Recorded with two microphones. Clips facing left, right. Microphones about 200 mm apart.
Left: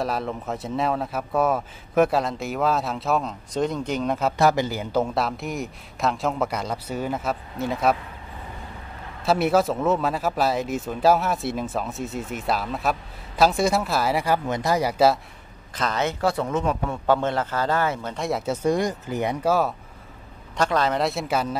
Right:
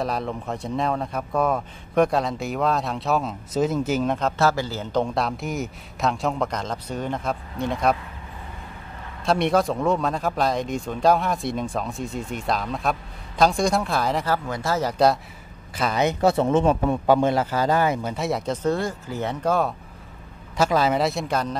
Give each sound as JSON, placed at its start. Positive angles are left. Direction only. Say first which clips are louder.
{"t": 0.0, "sound": "a man's voice", "louder": "even", "side_deg": 0}
{"t": 4.4, "sound": "a man's voice", "louder": "left 2 dB", "side_deg": 15}
{"t": 9.2, "sound": "a man's voice", "louder": "left 1 dB", "side_deg": 5}
{"t": 15.7, "sound": "a man's voice", "louder": "right 3 dB", "side_deg": -10}
{"t": 17.0, "sound": "speech", "louder": "right 1 dB", "side_deg": -10}
{"t": 19.4, "sound": "a man's voice", "louder": "even", "side_deg": 5}
{"t": 20.5, "sound": "a man's voice", "louder": "right 2 dB", "side_deg": -5}